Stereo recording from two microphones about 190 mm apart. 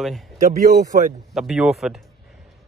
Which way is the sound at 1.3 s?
Centre (ahead or behind).